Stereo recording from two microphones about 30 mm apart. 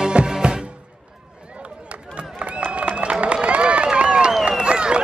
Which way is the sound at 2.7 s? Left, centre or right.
Right.